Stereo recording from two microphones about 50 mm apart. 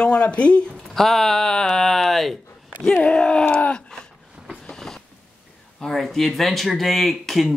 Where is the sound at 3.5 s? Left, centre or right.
Left.